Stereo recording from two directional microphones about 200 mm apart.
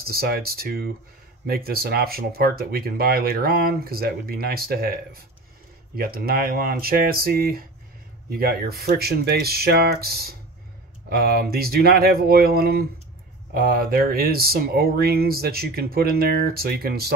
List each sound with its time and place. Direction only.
0.0 s speech: 50° right (ahead or behind)